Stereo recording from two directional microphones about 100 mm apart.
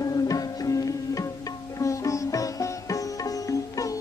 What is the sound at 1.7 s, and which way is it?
Sitar, 35° left (ahead or behind).